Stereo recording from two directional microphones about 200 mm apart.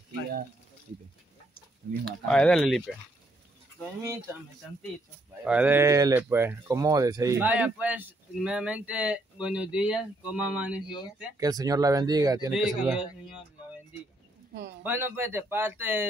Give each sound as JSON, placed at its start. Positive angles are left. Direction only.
{"t": 2.0, "sound": "speech", "side_deg": 5}
{"t": 5.4, "sound": "speech", "side_deg": -5}
{"t": 11.3, "sound": "speech", "side_deg": -20}
{"t": 12.4, "sound": "speech", "side_deg": -5}
{"t": 14.8, "sound": "speech", "side_deg": -10}